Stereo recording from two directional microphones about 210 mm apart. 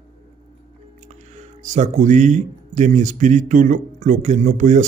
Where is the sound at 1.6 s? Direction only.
35° right (ahead or behind).